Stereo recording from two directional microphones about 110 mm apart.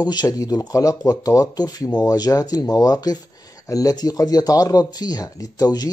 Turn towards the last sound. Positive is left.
turn(degrees=35)  # may be behind; listen again after turning